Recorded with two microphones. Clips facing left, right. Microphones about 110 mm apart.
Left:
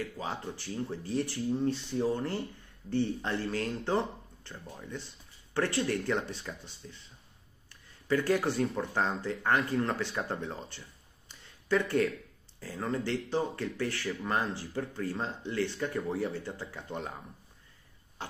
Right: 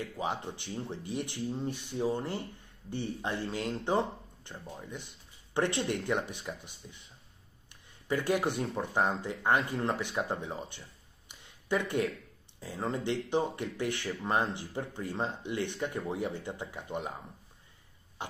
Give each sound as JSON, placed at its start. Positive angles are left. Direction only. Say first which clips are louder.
{"t": 0.0, "sound": "speech", "louder": "right 2 dB", "side_deg": -20}
{"t": 8.1, "sound": "speech", "louder": "left 2 dB", "side_deg": -15}